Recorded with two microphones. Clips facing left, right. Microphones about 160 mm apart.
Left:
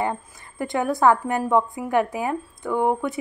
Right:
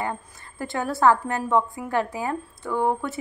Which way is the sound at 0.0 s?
20° left (ahead or behind).